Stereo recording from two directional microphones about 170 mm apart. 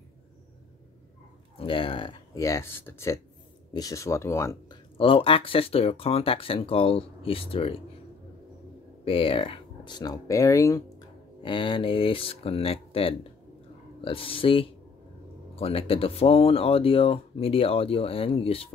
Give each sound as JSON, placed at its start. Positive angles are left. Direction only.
{"t": 1.6, "sound": "speech", "side_deg": 30}
{"t": 4.9, "sound": "speech", "side_deg": 30}
{"t": 9.0, "sound": "speech", "side_deg": 30}
{"t": 11.4, "sound": "speech", "side_deg": 30}